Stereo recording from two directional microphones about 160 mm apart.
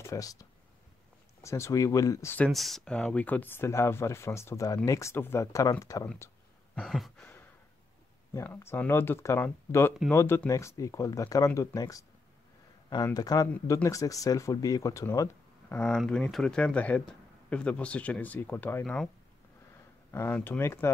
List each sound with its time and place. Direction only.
0.0 s speech: 20° left (ahead or behind)
6.7 s a sound: centre (ahead or behind)
8.3 s speech: 15° left (ahead or behind)
15.7 s speech: 5° left (ahead or behind)
20.1 s speech: 15° left (ahead or behind)